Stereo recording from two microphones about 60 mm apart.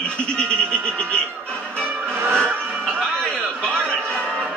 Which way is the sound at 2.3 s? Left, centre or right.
Centre.